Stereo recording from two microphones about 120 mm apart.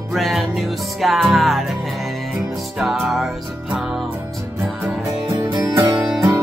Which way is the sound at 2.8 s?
Centre (ahead or behind).